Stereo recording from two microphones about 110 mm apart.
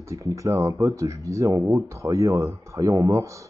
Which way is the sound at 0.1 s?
30° right (ahead or behind).